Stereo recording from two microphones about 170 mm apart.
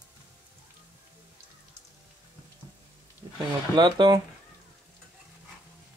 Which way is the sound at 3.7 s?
25° right (ahead or behind).